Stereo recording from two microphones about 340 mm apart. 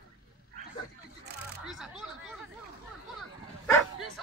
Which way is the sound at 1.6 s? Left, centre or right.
Centre.